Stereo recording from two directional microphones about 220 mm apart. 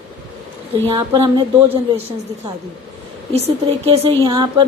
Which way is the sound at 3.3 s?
25° right (ahead or behind).